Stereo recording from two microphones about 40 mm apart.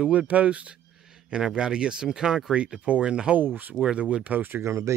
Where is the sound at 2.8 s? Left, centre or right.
Right.